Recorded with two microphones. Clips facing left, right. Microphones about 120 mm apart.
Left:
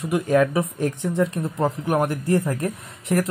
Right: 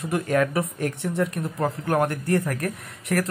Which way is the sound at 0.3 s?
20° left (ahead or behind).